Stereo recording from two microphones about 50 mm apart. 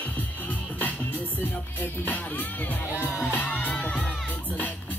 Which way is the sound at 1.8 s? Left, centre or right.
Left.